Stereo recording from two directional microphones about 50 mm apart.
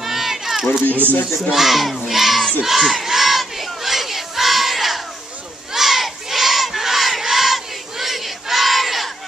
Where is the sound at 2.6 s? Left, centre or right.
Centre.